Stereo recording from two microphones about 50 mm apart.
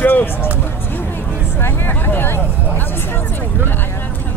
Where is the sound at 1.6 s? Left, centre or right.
Left.